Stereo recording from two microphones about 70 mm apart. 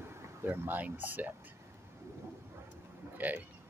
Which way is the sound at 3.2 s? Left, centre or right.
Right.